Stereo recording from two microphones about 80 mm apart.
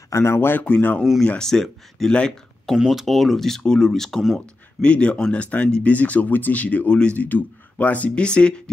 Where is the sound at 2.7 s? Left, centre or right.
Centre.